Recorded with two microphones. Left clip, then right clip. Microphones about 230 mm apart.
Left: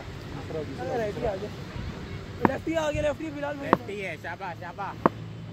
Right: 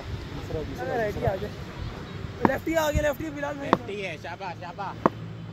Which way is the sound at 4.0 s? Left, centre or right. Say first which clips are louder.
Even; left.